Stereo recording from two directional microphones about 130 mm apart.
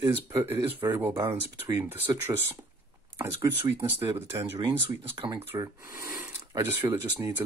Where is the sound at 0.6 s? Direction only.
40° right (ahead or behind).